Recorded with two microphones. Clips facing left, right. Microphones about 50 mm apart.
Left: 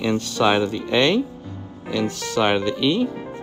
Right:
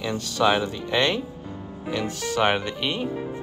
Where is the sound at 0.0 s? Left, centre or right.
Left.